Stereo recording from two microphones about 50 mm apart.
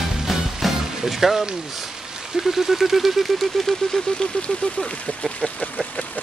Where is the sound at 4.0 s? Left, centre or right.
Centre.